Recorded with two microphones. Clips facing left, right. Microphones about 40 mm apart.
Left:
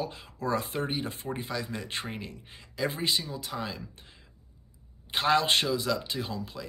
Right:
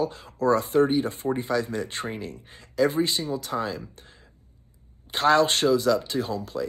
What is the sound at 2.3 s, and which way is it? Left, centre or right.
Speech, left.